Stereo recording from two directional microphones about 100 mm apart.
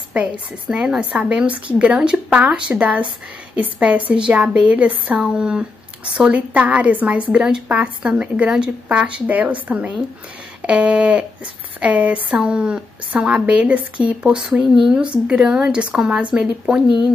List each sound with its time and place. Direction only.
0.1 s speech: 10° right (ahead or behind)